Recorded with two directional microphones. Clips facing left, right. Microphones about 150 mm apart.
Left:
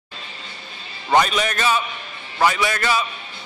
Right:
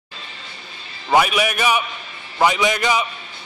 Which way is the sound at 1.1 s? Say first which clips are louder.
Right 1 dB; 10° right (ahead or behind).